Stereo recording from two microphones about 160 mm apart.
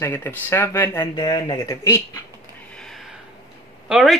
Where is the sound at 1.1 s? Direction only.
30° left (ahead or behind).